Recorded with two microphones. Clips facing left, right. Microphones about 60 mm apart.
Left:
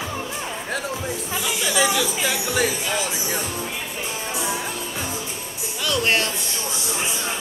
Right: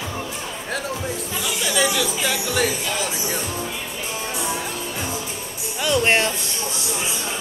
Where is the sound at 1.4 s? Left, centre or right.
Centre.